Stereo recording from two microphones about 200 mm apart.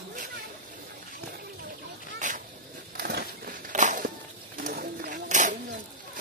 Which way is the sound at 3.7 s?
40° right (ahead or behind).